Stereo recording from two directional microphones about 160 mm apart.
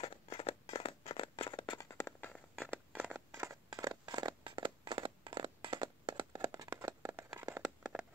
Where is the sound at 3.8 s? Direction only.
25° right (ahead or behind).